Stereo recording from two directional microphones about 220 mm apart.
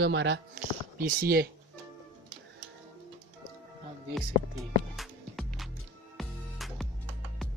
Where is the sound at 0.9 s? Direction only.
40° right (ahead or behind).